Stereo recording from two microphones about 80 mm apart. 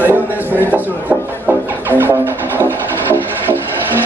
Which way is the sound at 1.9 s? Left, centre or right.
Right.